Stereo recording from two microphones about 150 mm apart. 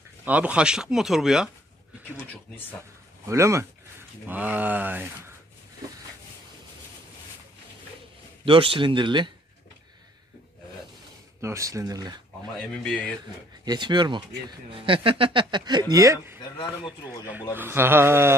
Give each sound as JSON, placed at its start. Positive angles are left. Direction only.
{"t": 0.2, "sound": "speech", "side_deg": -10}
{"t": 3.3, "sound": "speech", "side_deg": -20}
{"t": 8.5, "sound": "speech", "side_deg": -35}
{"t": 11.4, "sound": "speech", "side_deg": -20}
{"t": 12.5, "sound": "speech", "side_deg": 5}
{"t": 13.7, "sound": "speech", "side_deg": -30}
{"t": 17.6, "sound": "speech", "side_deg": -15}